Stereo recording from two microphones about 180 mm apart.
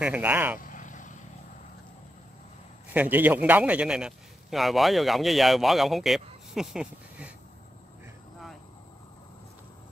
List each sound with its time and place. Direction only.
0.0 s speech: 10° right (ahead or behind)
0.6 s vehicle: 45° left (ahead or behind)
2.9 s a man's voice: 10° right (ahead or behind)